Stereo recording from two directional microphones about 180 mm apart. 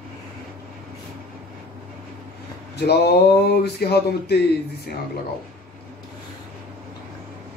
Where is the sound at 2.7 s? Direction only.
65° left (ahead or behind).